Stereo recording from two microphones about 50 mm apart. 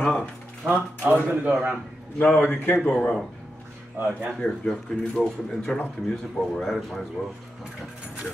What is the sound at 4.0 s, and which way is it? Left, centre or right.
Speech, right.